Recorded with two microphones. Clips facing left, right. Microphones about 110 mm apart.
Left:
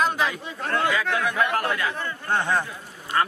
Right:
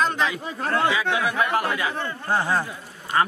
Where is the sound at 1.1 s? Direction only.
10° right (ahead or behind).